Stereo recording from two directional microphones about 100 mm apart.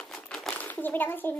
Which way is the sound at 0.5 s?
20° left (ahead or behind).